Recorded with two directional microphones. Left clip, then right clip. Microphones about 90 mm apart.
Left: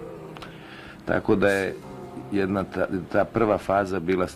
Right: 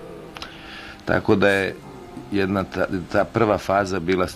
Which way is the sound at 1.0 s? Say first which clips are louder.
Right 3 dB; 40° right (ahead or behind).